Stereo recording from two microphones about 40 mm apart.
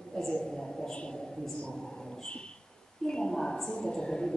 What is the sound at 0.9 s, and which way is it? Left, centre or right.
Speech, left.